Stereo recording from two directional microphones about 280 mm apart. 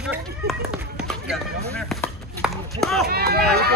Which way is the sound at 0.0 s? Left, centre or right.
Centre.